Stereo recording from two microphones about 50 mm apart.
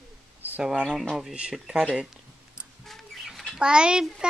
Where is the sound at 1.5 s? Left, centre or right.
Centre.